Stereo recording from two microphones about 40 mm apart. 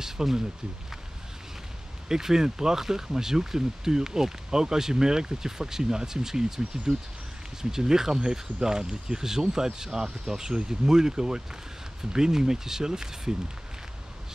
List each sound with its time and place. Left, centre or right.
0.0 s speech: centre
2.0 s speech: centre